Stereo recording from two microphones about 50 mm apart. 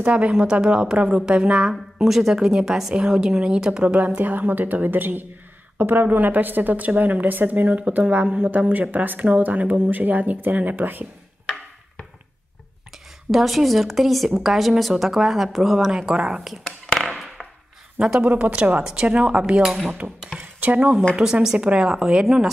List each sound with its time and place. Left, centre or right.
0.0 s a woman's voice: right
2.0 s a woman's voice: centre; by 11.1 s right
13.3 s a woman's voice: centre
16.0 s a woman's voice: centre
16.6 s chop: centre
17.9 s speech: centre
18.2 s a woman's voice: right
19.6 s a woman's voice: centre
20.3 s speech: centre
20.6 s a woman's voice: right
21.2 s a woman's voice: centre